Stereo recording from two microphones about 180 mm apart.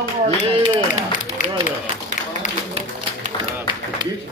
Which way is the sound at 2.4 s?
40° left (ahead or behind).